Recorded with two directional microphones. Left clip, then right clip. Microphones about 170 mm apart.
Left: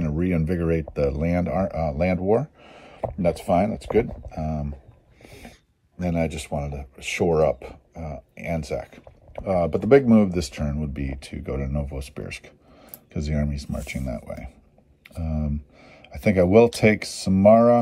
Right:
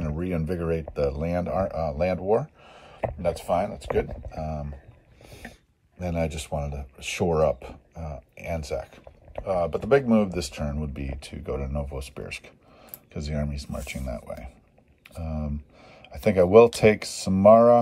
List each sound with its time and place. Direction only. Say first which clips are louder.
0.2 s speech: left 4 dB; centre (ahead or behind)
2.4 s a sound: left 3 dB; 15° left (ahead or behind)
3.2 s speech: left 4 dB; 20° left (ahead or behind)
4.3 s speech: left 2 dB; centre (ahead or behind)
10.1 s speech: left 3 dB; centre (ahead or behind)